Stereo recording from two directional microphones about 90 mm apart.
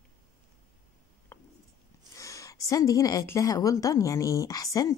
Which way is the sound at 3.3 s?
40° left (ahead or behind).